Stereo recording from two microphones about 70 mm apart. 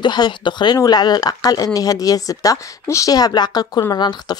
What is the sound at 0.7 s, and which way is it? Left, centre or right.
Speech, left.